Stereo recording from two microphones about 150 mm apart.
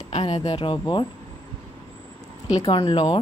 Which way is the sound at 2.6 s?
30° left (ahead or behind).